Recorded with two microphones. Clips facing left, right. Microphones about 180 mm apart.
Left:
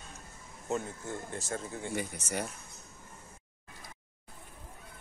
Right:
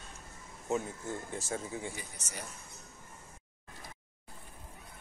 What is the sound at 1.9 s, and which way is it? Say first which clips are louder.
Speech: left 8 dB; 65° left (ahead or behind).